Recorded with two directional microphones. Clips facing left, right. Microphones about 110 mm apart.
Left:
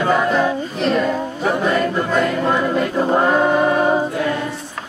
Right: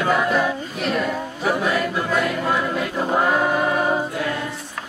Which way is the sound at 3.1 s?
5° left (ahead or behind).